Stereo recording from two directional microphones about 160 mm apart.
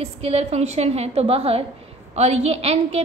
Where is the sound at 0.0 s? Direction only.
40° right (ahead or behind).